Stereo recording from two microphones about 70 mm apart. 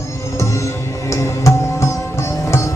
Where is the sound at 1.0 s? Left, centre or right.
Left.